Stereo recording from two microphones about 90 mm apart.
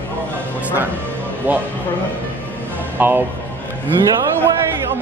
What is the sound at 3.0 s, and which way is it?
Speech, 25° right (ahead or behind).